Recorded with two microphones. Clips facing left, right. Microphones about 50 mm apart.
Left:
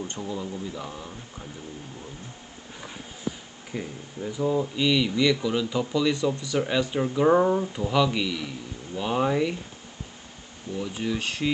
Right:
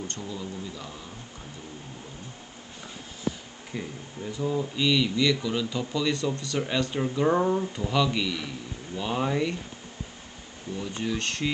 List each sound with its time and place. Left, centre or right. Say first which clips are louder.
0.1 s speech: left 3 dB; centre
3.7 s speech: left 2 dB; centre
10.8 s speech: left 2 dB; centre